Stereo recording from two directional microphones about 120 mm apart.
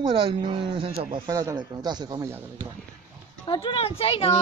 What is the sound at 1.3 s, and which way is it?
Speech, 30° right (ahead or behind).